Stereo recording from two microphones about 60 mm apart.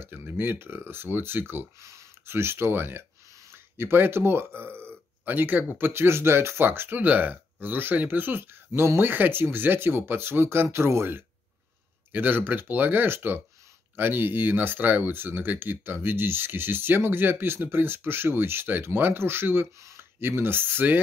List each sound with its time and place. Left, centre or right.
0.0 s speech: right
1.8 s speech: right
12.1 s speech: right